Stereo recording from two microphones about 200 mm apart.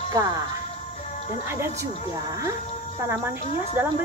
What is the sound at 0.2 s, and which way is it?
Speech, 15° right (ahead or behind).